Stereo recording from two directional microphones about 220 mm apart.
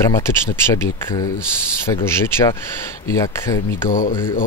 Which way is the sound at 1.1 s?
15° left (ahead or behind).